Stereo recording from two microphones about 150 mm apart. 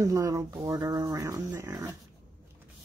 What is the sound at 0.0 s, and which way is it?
Speech, 20° right (ahead or behind).